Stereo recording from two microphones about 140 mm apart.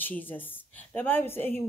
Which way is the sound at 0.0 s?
15° left (ahead or behind).